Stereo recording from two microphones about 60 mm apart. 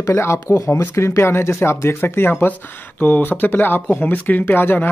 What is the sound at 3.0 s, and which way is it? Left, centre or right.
Speech, left.